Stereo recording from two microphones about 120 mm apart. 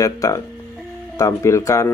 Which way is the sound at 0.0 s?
25° left (ahead or behind).